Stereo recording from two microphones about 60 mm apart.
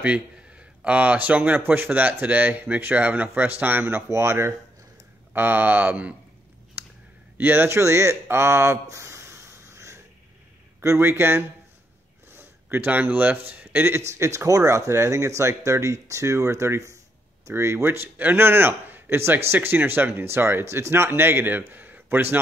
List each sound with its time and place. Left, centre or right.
0.0 s speech: right
5.3 s speech: right
7.3 s speech: right
7.8 s a sound: right
10.8 s speech: right
13.9 s speech: right
17.8 s speech: right